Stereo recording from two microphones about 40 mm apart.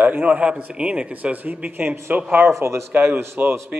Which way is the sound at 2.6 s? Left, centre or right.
Right.